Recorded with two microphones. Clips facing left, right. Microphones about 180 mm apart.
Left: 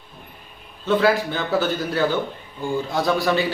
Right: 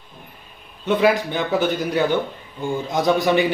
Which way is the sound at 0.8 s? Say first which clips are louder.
Right 1 dB; 15° right (ahead or behind).